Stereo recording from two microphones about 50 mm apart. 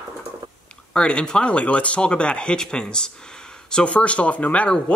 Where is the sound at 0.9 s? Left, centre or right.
Centre.